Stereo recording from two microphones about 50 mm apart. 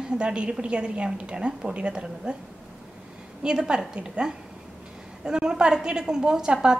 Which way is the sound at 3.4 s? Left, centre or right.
Centre.